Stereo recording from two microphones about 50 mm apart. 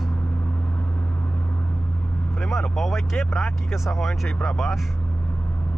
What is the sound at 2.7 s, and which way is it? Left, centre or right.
Speech, centre.